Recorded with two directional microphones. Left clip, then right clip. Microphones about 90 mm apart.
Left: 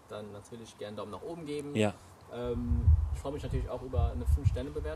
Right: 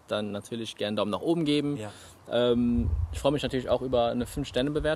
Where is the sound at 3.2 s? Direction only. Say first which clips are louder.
Right 13 dB; 45° right (ahead or behind).